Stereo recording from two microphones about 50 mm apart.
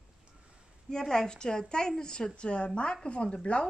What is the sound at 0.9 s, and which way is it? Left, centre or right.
A woman's voice, centre.